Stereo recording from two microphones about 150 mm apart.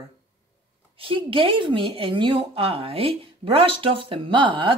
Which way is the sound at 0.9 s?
35° right (ahead or behind).